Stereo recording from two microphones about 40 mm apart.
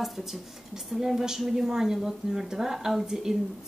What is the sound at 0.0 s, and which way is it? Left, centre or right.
A woman's voice, centre.